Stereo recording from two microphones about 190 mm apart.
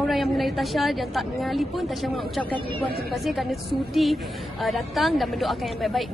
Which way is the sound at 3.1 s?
Centre (ahead or behind).